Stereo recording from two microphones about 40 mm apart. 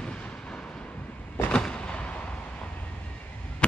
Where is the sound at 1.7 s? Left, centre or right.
Left.